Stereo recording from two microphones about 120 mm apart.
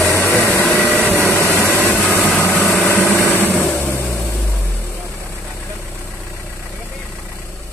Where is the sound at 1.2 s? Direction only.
15° left (ahead or behind).